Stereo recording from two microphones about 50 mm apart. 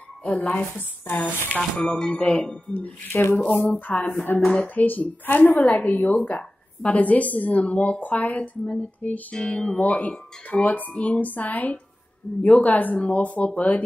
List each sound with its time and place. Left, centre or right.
0.4 s a woman's voice: left
1.6 s a woman's voice: centre; by 4.4 s left
4.4 s dishes: centre
4.7 s a woman's voice: left